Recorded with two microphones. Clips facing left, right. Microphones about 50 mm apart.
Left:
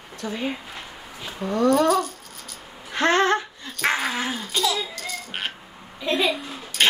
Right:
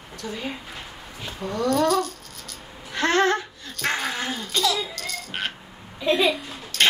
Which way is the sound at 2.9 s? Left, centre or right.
Left.